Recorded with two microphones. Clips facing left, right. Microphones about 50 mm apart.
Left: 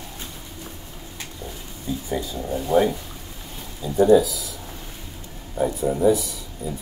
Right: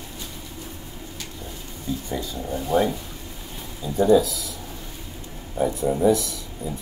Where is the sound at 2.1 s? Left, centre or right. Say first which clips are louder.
Left 2 dB; centre.